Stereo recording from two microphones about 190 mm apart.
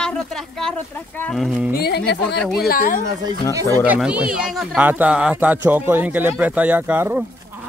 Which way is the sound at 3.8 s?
5° right (ahead or behind).